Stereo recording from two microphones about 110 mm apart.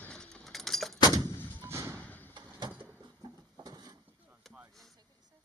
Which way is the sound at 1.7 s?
25° right (ahead or behind).